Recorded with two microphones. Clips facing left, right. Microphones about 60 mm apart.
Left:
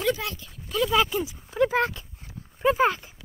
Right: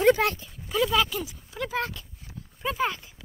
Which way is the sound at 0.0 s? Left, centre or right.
Right.